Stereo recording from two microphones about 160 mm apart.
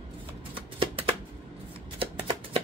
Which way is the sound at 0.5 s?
35° right (ahead or behind).